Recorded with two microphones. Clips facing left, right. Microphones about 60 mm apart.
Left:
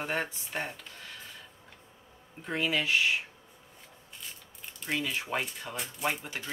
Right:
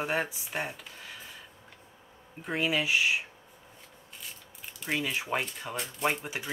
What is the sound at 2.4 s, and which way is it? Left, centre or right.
Speech, centre.